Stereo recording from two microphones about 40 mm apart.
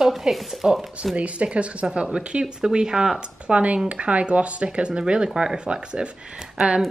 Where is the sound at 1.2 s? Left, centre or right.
Right.